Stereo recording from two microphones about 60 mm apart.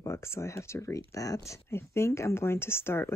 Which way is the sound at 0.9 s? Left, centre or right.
Left.